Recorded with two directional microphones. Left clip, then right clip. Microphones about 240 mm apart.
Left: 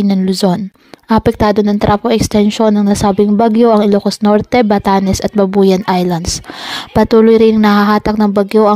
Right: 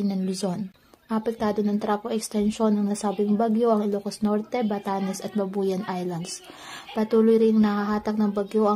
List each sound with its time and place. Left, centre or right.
0.1 s a woman's voice: left